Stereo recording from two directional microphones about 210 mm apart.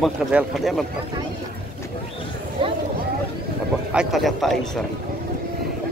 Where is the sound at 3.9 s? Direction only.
Centre (ahead or behind).